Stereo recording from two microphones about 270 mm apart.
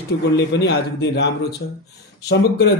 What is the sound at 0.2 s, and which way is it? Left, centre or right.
Speech, left.